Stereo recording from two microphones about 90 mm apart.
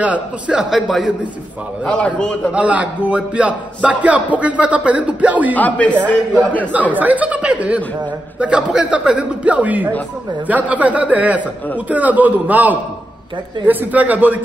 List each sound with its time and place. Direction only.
0.0 s a man's voice: 15° right (ahead or behind)
1.9 s a man's voice: 15° left (ahead or behind)
2.5 s speech: 15° right (ahead or behind)
5.5 s a man's voice: 15° left (ahead or behind)
6.7 s a man's voice: 20° right (ahead or behind)